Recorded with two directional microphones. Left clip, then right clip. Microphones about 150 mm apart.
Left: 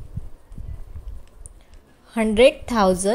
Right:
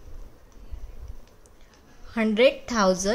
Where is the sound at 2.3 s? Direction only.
25° left (ahead or behind).